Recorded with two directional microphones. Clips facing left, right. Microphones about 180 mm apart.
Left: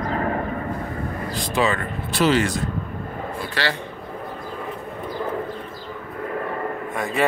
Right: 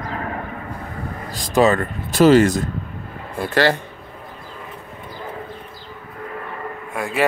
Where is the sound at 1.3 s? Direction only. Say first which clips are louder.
Right 7 dB; 40° right (ahead or behind).